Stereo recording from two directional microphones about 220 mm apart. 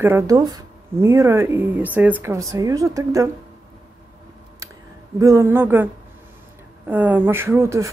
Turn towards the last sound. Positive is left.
turn(degrees=-10)  # may be behind; listen again after turning